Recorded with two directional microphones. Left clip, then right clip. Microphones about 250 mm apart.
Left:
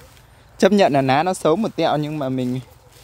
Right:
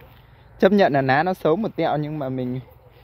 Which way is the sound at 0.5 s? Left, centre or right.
Centre.